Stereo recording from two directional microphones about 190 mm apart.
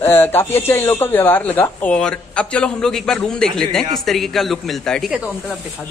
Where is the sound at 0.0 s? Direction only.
10° left (ahead or behind).